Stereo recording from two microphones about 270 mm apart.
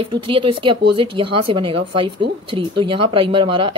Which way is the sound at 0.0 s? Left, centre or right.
Centre.